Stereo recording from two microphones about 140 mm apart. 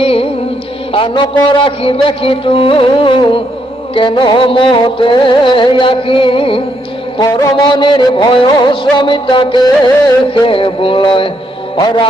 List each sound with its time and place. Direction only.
0.0 s music: 40° left (ahead or behind)
10.4 s a man's voice: 40° left (ahead or behind)